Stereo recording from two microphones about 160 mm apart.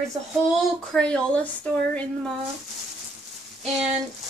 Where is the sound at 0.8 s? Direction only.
5° left (ahead or behind).